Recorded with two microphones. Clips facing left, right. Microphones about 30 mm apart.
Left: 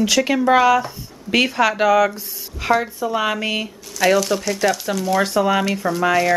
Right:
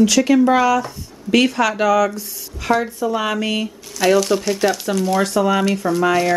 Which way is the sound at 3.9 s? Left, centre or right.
Centre.